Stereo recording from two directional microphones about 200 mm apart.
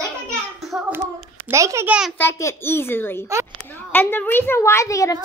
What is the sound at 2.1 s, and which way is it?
A woman's voice, 10° left (ahead or behind).